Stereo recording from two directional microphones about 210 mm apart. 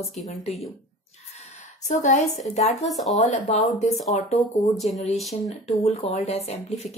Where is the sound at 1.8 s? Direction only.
35° left (ahead or behind).